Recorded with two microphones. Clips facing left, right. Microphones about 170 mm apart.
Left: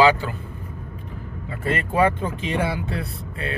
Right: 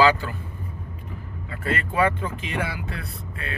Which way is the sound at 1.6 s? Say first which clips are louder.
Left 3 dB; 30° left (ahead or behind).